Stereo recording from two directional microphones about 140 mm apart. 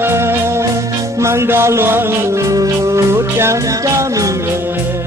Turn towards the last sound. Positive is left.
turn(degrees=-25)  # may be behind; listen again after turning